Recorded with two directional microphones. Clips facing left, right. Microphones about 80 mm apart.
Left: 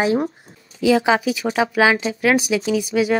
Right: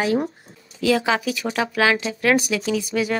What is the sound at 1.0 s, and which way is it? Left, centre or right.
A woman's voice, centre.